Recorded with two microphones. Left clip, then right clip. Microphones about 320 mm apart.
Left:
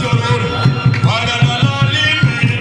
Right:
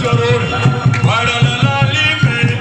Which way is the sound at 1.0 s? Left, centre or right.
Centre.